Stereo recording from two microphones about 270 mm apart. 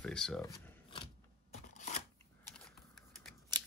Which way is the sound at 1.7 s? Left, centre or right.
Left.